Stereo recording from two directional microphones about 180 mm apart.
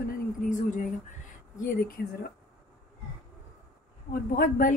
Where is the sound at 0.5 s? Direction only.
45° left (ahead or behind).